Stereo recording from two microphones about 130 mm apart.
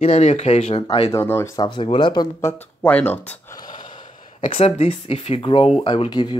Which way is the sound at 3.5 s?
35° left (ahead or behind).